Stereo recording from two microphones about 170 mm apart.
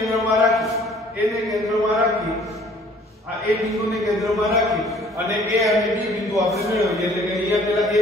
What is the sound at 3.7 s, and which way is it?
Speech, centre (ahead or behind).